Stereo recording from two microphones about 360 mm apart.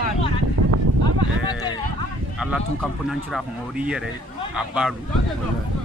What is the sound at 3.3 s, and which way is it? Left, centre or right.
Speech, centre.